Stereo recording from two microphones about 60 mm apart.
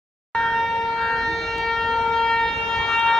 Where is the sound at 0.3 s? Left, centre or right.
Centre.